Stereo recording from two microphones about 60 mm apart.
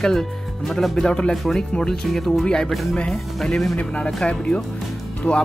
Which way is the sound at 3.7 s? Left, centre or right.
Centre.